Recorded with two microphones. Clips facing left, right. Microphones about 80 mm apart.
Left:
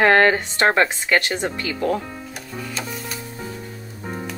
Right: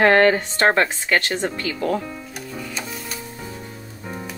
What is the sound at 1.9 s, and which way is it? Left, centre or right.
Music, centre.